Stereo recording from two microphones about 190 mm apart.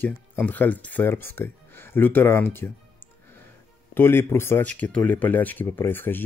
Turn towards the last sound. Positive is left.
turn(degrees=10)  # may be behind; listen again after turning